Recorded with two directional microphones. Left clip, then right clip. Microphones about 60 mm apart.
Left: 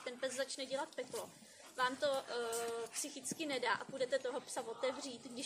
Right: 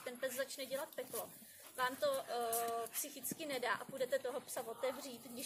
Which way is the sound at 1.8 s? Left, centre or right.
Centre.